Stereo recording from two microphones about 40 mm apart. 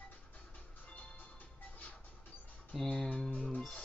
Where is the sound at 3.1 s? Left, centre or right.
Left.